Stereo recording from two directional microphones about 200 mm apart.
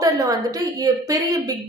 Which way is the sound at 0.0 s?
15° right (ahead or behind).